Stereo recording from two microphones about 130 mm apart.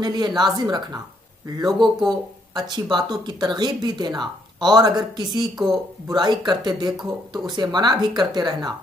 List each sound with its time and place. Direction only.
0.0 s speech: 35° right (ahead or behind)
1.8 s speech: centre (ahead or behind)
2.7 s speech: 35° right (ahead or behind)